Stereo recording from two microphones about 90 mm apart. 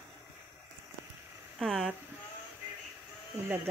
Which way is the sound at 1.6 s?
Centre (ahead or behind).